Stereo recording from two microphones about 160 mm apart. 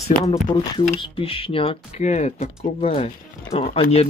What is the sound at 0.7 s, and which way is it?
Speech, 35° left (ahead or behind).